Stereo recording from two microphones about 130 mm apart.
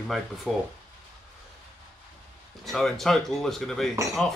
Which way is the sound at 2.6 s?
Centre (ahead or behind).